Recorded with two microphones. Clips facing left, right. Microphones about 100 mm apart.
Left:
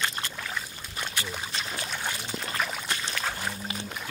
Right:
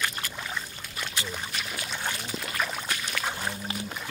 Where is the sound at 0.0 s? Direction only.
25° left (ahead or behind).